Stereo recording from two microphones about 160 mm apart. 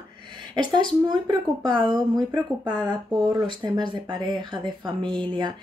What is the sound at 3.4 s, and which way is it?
Speech, 30° right (ahead or behind).